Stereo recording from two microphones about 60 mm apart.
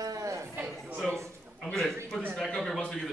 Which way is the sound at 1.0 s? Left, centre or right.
Centre.